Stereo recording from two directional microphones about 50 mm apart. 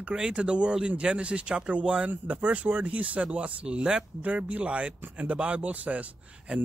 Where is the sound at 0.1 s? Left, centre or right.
Centre.